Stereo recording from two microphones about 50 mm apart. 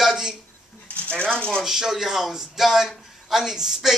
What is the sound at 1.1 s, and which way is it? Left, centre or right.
Speech, centre.